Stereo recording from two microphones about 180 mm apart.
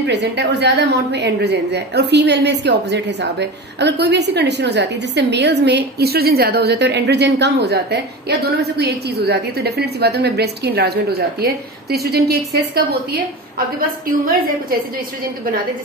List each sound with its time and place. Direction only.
0.0 s a woman's voice: 75° right (ahead or behind)
13.7 s a woman's voice: 50° right (ahead or behind)